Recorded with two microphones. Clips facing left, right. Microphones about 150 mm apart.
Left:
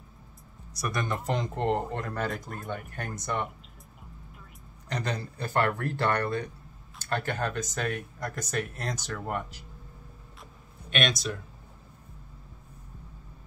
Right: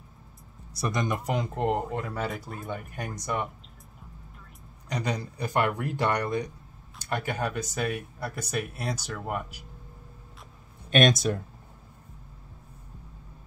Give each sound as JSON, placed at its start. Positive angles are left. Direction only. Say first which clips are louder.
{"t": 0.7, "sound": "speech", "louder": "right 2 dB", "side_deg": -25}
{"t": 1.0, "sound": "speech", "louder": "right 1 dB", "side_deg": -10}
{"t": 4.8, "sound": "speech", "louder": "right 2 dB", "side_deg": -10}
{"t": 10.9, "sound": "speech", "louder": "right 7 dB", "side_deg": -45}